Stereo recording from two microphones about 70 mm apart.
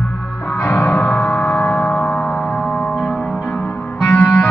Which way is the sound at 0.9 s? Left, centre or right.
Left.